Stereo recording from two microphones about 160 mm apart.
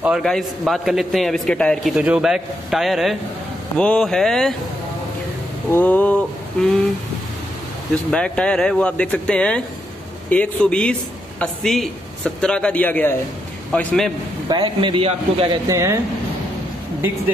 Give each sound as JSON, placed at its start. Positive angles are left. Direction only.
{"t": 0.2, "sound": "a man's voice", "side_deg": 0}
{"t": 5.7, "sound": "a man's voice", "side_deg": 10}
{"t": 7.9, "sound": "a man's voice", "side_deg": 5}
{"t": 14.5, "sound": "speech", "side_deg": -30}
{"t": 15.7, "sound": "speech", "side_deg": -15}